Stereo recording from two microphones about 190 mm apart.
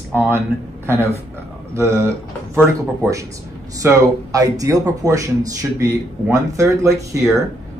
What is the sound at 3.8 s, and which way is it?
Speech, 20° right (ahead or behind).